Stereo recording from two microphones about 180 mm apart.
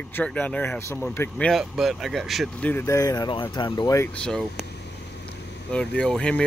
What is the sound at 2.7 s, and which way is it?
Speech, 15° left (ahead or behind).